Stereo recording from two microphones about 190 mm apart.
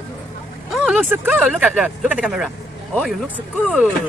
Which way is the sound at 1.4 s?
Centre (ahead or behind).